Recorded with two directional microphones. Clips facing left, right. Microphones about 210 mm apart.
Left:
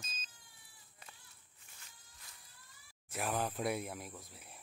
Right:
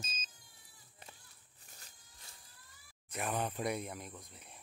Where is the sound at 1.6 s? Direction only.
40° right (ahead or behind).